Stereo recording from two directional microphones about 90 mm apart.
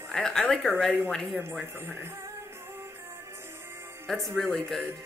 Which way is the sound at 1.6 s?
25° right (ahead or behind).